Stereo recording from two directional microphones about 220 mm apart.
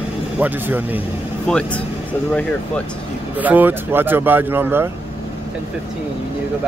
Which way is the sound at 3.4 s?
10° right (ahead or behind).